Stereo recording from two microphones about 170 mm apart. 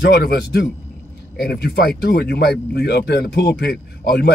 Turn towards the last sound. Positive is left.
turn(degrees=70)  # may be behind; listen again after turning